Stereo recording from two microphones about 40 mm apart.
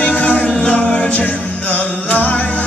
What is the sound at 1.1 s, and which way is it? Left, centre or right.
Music, left.